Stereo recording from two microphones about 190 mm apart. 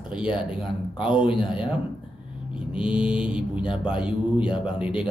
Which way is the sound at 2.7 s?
5° right (ahead or behind).